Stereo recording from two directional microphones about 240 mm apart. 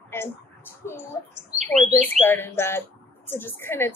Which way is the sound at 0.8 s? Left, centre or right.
Centre.